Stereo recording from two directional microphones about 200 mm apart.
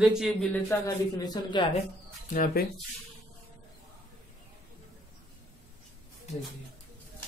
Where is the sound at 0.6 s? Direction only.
15° left (ahead or behind).